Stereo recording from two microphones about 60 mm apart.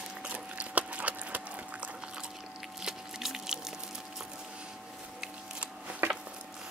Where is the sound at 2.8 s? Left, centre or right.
Centre.